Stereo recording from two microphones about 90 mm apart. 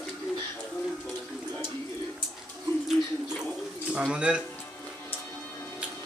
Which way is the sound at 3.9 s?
10° right (ahead or behind).